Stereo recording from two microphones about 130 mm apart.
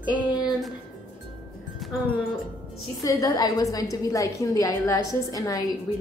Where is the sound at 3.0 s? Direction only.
25° left (ahead or behind).